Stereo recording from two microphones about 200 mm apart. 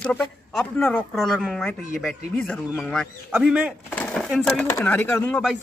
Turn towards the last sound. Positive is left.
turn(degrees=10)  # may be behind; listen again after turning